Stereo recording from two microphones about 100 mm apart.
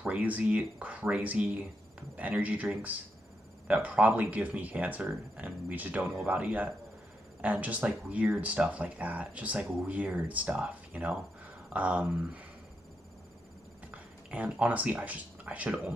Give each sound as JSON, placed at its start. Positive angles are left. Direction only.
{"t": 0.0, "sound": "speech", "side_deg": -15}
{"t": 14.3, "sound": "speech", "side_deg": -15}